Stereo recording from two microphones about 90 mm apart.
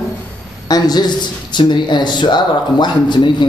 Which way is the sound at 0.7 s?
50° left (ahead or behind).